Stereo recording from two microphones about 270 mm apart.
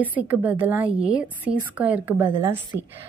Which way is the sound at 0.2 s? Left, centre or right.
Centre.